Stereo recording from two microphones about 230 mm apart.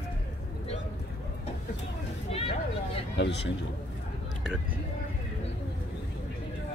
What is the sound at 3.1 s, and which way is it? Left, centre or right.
Speech, left.